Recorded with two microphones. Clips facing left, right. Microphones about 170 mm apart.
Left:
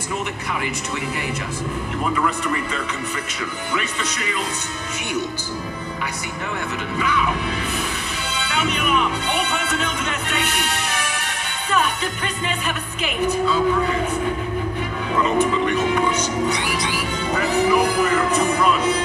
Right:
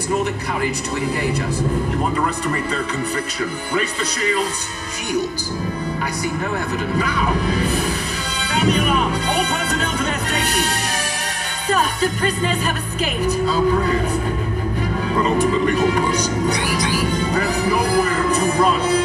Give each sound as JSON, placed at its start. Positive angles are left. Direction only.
{"t": 3.7, "sound": "music", "side_deg": -35}
{"t": 7.0, "sound": "music", "side_deg": -35}
{"t": 15.2, "sound": "music", "side_deg": -35}